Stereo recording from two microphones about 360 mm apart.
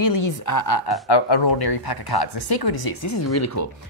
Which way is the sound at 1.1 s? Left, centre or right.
Left.